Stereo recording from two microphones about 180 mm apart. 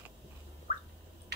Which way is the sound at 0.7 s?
45° left (ahead or behind).